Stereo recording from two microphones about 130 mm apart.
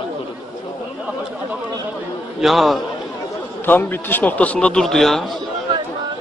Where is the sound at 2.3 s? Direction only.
Centre (ahead or behind).